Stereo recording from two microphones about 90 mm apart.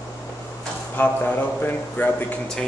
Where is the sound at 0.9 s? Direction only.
20° left (ahead or behind).